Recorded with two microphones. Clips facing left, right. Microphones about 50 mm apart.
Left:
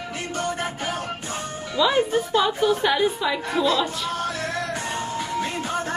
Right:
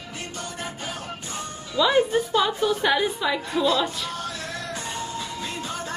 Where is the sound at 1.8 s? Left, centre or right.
Centre.